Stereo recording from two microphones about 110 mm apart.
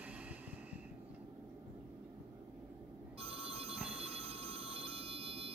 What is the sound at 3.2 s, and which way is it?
Telephone bell ringing, 60° right (ahead or behind).